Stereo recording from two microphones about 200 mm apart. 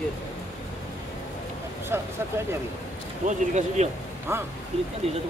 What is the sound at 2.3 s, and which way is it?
Speech, 10° right (ahead or behind).